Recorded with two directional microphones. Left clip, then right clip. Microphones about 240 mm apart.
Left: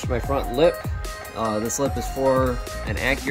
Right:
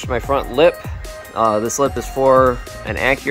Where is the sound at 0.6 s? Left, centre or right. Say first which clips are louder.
Right 5 dB; centre.